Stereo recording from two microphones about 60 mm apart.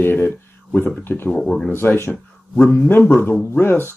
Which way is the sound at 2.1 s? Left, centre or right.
Left.